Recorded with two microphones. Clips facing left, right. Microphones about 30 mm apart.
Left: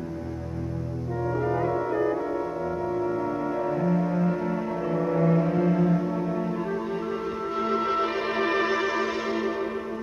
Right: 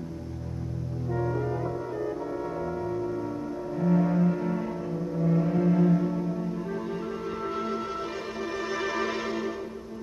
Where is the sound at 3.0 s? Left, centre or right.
Left.